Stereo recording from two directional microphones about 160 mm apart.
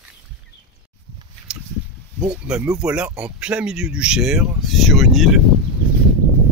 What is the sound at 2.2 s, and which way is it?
Speech, 5° right (ahead or behind).